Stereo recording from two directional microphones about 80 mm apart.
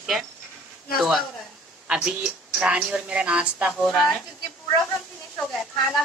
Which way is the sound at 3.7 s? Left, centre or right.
Centre.